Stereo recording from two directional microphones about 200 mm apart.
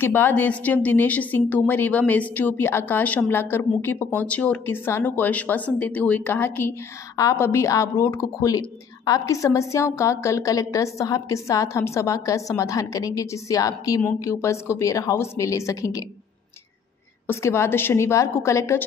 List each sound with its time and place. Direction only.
0.0 s a woman's voice: 10° left (ahead or behind)
17.3 s a woman's voice: 15° left (ahead or behind)